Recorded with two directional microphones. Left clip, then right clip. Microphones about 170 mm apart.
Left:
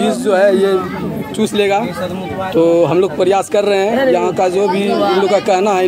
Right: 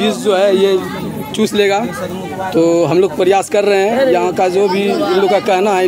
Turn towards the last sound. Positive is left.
turn(degrees=0)  # may be behind; listen again after turning